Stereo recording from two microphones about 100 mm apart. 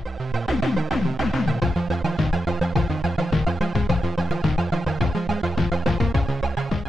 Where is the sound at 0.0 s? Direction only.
Centre (ahead or behind).